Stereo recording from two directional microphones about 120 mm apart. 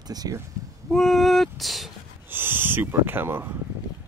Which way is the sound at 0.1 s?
30° right (ahead or behind).